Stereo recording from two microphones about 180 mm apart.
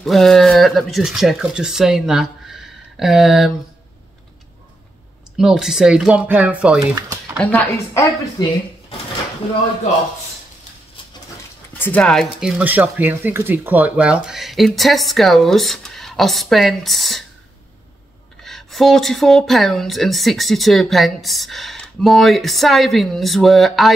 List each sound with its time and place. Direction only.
0.0 s speech: centre (ahead or behind)
5.4 s speech: 5° right (ahead or behind)
7.5 s a woman's voice: 15° left (ahead or behind)
11.8 s speech: 5° left (ahead or behind)
18.4 s speech: centre (ahead or behind)